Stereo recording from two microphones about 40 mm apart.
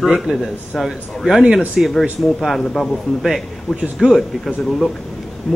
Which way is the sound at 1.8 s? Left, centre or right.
Centre.